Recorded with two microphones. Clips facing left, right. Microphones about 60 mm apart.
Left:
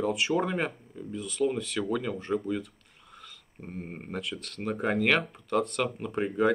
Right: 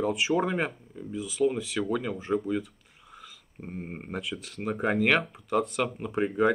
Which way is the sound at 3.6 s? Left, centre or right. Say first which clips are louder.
Right 1 dB; centre.